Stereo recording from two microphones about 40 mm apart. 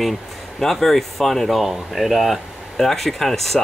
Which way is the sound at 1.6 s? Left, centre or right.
Centre.